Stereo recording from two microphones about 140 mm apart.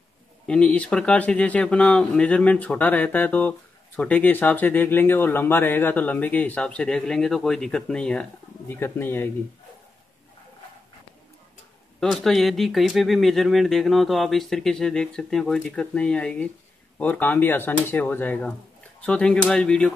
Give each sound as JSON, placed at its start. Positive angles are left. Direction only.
{"t": 0.5, "sound": "speech", "side_deg": 10}
{"t": 12.0, "sound": "speech", "side_deg": 0}